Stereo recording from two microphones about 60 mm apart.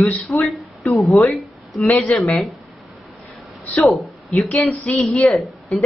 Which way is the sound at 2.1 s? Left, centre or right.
Centre.